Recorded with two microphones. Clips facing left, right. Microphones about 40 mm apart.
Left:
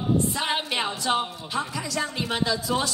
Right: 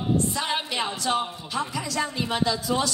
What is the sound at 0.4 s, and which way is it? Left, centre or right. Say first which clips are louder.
Speech: left 1 dB; left.